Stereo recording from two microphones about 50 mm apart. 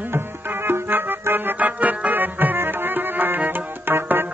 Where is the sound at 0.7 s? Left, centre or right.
Right.